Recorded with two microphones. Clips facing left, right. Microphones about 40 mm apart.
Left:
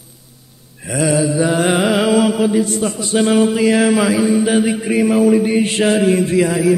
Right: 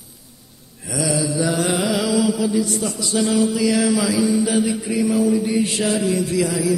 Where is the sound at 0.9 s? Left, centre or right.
Left.